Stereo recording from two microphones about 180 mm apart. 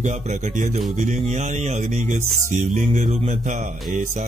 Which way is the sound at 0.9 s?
40° right (ahead or behind).